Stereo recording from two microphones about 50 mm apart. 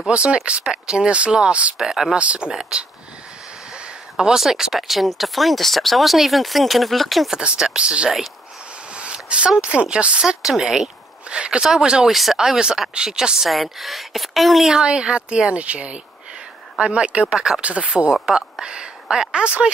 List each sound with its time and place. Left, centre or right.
0.1 s speech: right
1.8 s speech: centre
2.1 s speech: right; by 7.3 s centre
7.3 s speech: centre
8.9 s a sound: right
9.6 s speech: right
10.2 s speech: centre
11.2 s speech: right
12.1 s speech: centre
12.4 s speech: centre
13.5 s speech: centre
14.7 s speech: centre
18.1 s speech: centre